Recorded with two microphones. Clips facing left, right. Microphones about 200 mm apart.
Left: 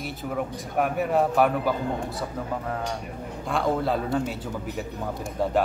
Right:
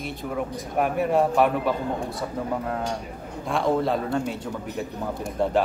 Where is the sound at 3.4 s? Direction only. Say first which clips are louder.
Right 2 dB; centre (ahead or behind).